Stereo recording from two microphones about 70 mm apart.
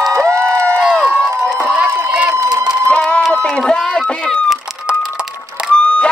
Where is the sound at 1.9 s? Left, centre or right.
Right.